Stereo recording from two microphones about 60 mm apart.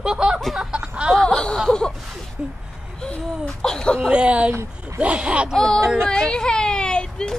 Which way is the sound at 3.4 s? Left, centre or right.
Centre.